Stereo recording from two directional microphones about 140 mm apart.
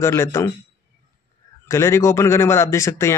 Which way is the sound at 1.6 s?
20° left (ahead or behind).